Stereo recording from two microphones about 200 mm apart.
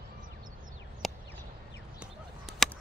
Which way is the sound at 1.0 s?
Centre (ahead or behind).